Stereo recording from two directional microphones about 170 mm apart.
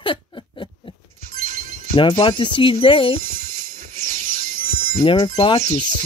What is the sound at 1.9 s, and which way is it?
Speech, 30° left (ahead or behind).